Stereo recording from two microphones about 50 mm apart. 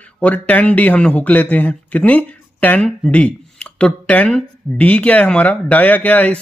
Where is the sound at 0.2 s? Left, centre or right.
Left.